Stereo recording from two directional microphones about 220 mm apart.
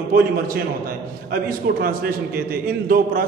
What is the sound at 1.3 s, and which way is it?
A man's voice, 40° right (ahead or behind).